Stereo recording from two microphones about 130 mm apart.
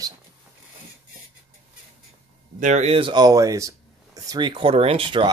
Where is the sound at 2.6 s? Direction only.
65° right (ahead or behind).